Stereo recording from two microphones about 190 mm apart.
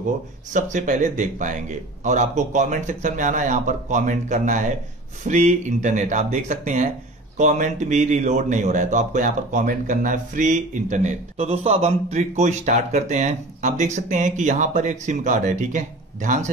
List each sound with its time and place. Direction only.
0.5 s speech: 40° right (ahead or behind)